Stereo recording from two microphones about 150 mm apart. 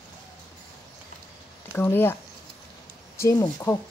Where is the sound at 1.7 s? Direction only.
15° left (ahead or behind).